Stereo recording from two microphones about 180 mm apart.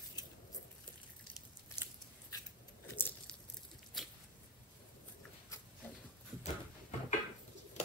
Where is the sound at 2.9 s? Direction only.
10° left (ahead or behind).